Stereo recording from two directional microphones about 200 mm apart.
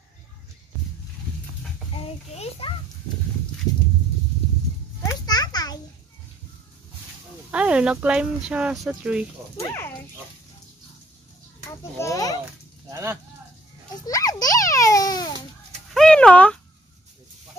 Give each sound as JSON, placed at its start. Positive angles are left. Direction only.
{"t": 2.0, "sound": "a child's voice", "side_deg": 30}
{"t": 5.0, "sound": "children playing", "side_deg": 20}
{"t": 7.5, "sound": "speech", "side_deg": -5}
{"t": 9.6, "sound": "speech", "side_deg": 15}
{"t": 11.7, "sound": "a child's voice", "side_deg": 15}
{"t": 12.9, "sound": "speech", "side_deg": -10}
{"t": 14.0, "sound": "a sound", "side_deg": 20}
{"t": 15.9, "sound": "a sound", "side_deg": 5}